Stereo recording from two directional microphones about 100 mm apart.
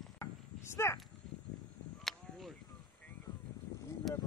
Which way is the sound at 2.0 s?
Centre (ahead or behind).